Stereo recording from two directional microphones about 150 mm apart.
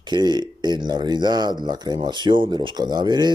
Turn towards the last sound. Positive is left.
turn(degrees=-30)  # may be behind; listen again after turning